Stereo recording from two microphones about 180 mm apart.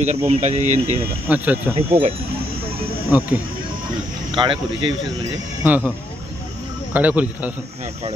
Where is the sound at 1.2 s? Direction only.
10° right (ahead or behind).